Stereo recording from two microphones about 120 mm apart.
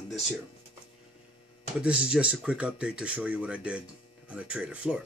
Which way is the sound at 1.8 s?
10° right (ahead or behind).